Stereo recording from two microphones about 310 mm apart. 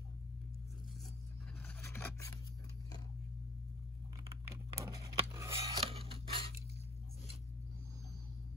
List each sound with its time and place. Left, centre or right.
1.8 s filing: centre
4.7 s scissors: centre